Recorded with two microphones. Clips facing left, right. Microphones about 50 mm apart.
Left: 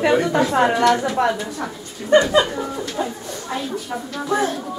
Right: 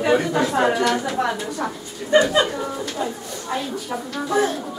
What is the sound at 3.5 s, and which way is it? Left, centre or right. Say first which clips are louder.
Speech: even; centre.